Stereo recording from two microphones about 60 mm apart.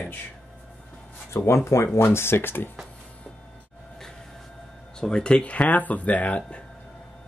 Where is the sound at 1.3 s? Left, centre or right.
Left.